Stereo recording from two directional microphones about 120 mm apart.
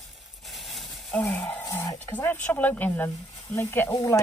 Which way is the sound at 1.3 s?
15° left (ahead or behind).